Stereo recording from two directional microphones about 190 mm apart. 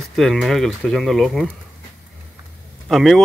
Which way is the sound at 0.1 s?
Centre (ahead or behind).